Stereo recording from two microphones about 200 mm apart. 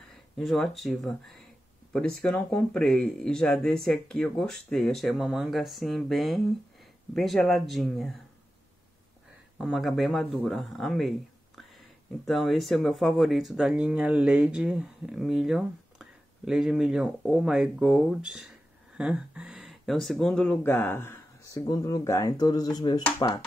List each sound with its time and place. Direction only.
0.4 s speech: centre (ahead or behind)
9.6 s speech: centre (ahead or behind); by 23.4 s 25° left (ahead or behind)